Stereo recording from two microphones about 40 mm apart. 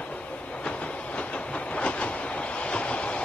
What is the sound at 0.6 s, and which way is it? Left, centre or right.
Train, left.